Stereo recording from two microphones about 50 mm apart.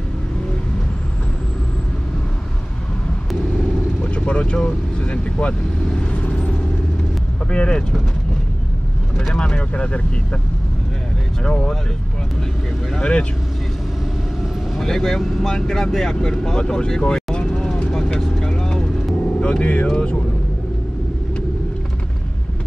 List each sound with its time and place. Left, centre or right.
4.0 s vehicle: left
4.6 s speech: left
6.1 s vehicle: left
7.5 s speech: left
9.3 s speech: centre
11.4 s speech: centre
13.0 s speech: left
14.8 s speech: centre
17.9 s vehicle: centre
19.4 s vehicle: left
19.9 s speech: centre